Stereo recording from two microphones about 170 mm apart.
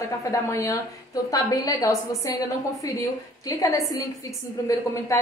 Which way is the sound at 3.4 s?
20° left (ahead or behind).